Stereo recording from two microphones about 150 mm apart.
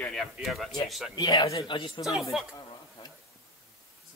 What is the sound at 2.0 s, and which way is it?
Speech, centre (ahead or behind).